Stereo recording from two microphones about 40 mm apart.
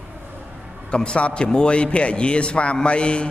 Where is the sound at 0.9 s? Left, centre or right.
Left.